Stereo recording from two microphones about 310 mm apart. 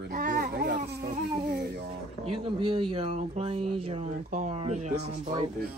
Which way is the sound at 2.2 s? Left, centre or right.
Centre.